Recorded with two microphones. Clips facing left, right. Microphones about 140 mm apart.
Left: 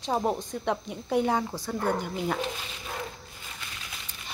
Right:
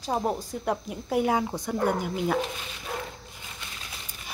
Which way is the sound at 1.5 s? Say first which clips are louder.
Right 3 dB; 20° right (ahead or behind).